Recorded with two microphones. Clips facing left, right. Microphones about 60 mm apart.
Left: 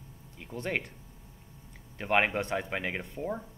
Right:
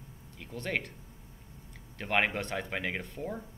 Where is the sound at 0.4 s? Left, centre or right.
Centre.